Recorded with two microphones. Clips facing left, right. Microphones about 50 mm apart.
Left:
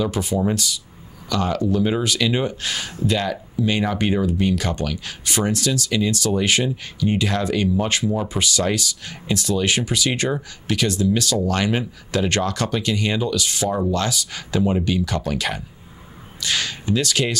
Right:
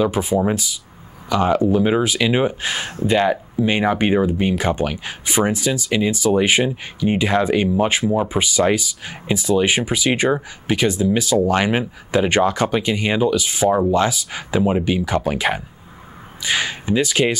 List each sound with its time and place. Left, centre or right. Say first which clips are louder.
0.0 s speech: right 4 dB; centre